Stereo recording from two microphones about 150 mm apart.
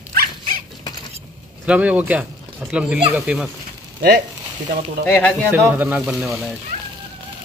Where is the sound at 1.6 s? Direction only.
10° right (ahead or behind).